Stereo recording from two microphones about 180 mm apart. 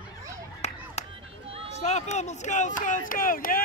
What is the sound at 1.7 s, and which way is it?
Speech, 40° left (ahead or behind).